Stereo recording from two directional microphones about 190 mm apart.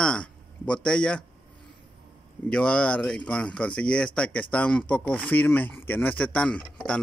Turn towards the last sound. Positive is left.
turn(degrees=5)  # may be behind; listen again after turning